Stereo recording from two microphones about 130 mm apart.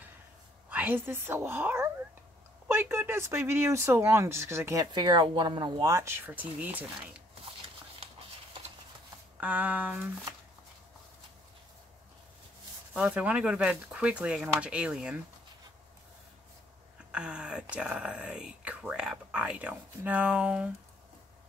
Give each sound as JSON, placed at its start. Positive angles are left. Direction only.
{"t": 0.7, "sound": "speech", "side_deg": -15}
{"t": 4.9, "sound": "speech", "side_deg": -35}
{"t": 9.4, "sound": "speech", "side_deg": -10}
{"t": 12.9, "sound": "speech", "side_deg": -10}
{"t": 17.1, "sound": "speech", "side_deg": -5}